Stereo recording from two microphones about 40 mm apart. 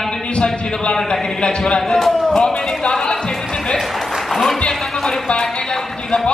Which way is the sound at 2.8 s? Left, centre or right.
Centre.